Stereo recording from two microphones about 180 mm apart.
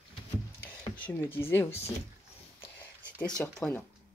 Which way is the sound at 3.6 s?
5° left (ahead or behind).